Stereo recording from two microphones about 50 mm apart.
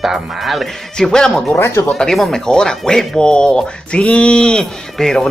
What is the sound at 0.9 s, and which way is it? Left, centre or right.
Speech, centre.